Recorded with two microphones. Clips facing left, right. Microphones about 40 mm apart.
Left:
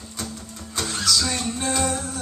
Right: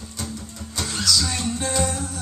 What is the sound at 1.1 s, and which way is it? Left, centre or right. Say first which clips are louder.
Music: right 1 dB; centre.